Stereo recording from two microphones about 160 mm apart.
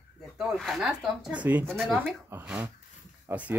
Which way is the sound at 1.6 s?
5° left (ahead or behind).